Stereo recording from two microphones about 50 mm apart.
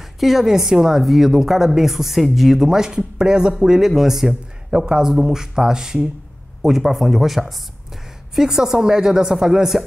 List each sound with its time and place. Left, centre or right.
0.2 s a woman's voice: centre